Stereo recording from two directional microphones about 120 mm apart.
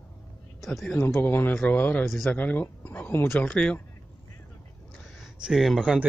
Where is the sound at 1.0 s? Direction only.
20° left (ahead or behind).